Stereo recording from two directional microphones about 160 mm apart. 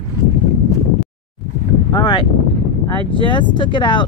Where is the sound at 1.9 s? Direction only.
30° left (ahead or behind).